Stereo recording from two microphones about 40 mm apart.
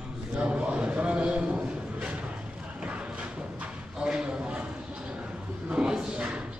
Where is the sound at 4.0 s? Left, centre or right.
Right.